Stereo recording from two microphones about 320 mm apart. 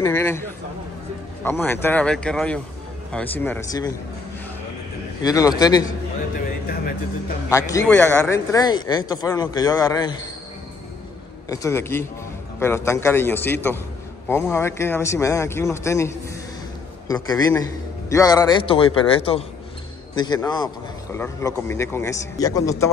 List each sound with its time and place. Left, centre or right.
0.0 s speech: centre
1.4 s speech: centre
5.2 s speech: centre
7.4 s speech: centre
11.4 s speech: centre